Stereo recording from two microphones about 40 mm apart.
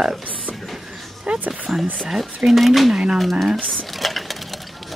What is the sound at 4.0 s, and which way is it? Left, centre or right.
Sewing machine, centre.